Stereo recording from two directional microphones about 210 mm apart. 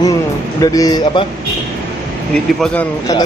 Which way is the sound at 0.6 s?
15° left (ahead or behind).